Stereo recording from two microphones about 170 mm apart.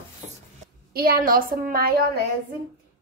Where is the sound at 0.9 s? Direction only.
60° right (ahead or behind).